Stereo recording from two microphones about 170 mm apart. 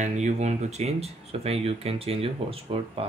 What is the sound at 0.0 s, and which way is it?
Speech, 45° right (ahead or behind).